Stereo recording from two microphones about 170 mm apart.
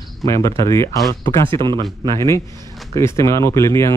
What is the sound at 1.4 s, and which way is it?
Speech, 30° right (ahead or behind).